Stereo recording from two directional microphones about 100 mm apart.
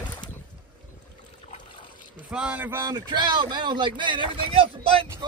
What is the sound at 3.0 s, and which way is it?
Speech, 45° right (ahead or behind).